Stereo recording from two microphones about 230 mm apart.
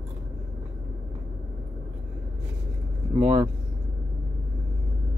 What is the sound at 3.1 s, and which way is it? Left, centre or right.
Speech, right.